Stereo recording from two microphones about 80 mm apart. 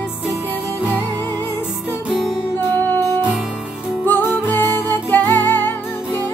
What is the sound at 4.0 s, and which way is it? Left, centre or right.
Music, left.